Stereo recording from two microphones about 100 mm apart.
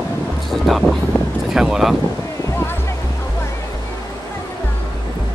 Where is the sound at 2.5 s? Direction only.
25° left (ahead or behind).